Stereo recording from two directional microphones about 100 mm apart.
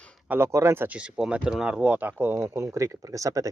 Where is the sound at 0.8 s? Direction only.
10° right (ahead or behind).